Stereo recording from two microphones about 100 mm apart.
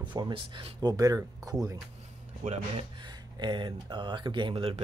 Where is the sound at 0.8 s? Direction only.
35° right (ahead or behind).